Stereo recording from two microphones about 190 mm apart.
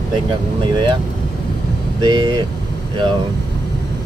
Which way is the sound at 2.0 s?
25° right (ahead or behind).